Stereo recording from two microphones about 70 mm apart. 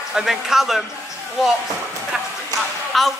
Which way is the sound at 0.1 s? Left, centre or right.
Centre.